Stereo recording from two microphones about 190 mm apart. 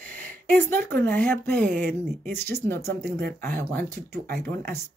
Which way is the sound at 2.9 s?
55° right (ahead or behind).